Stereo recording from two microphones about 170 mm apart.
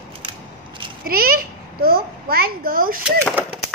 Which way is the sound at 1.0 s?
60° right (ahead or behind).